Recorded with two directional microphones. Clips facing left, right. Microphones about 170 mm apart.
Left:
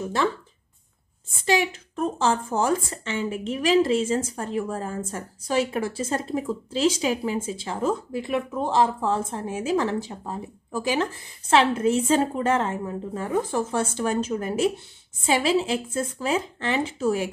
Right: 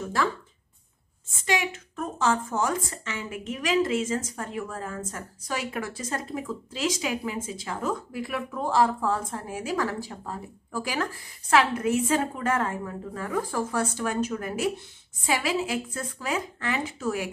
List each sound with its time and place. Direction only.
0.0 s speech: 25° left (ahead or behind)
1.4 s speech: 35° left (ahead or behind)